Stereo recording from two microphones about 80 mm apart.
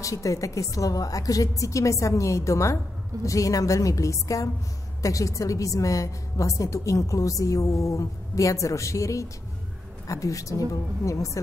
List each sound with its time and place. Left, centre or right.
0.0 s a woman's voice: left